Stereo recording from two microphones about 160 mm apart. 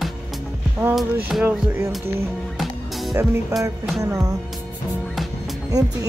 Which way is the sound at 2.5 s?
Centre (ahead or behind).